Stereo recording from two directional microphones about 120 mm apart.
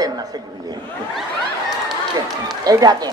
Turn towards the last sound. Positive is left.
turn(degrees=-30)  # may be behind; listen again after turning